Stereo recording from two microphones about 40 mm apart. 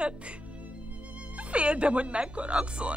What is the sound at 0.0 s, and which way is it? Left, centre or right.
Music, right.